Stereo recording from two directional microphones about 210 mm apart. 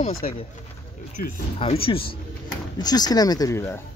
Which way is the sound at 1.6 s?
25° left (ahead or behind).